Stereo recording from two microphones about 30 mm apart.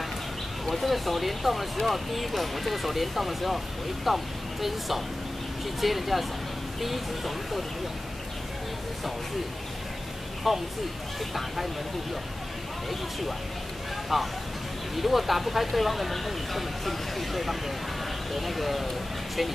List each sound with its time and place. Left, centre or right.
0.7 s speech: centre
10.4 s speech: centre
14.1 s speech: centre